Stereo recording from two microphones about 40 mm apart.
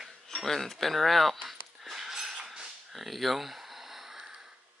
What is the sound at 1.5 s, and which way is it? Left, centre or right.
Dog, centre.